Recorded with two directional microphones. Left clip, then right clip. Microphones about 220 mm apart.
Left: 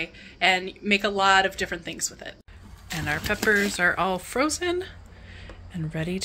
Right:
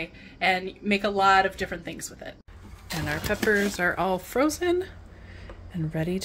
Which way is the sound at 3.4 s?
5° right (ahead or behind).